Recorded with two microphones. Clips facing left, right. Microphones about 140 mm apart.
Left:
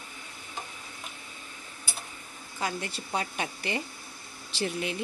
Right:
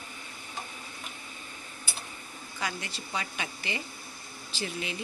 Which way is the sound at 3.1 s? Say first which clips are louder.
Left 4 dB; 45° left (ahead or behind).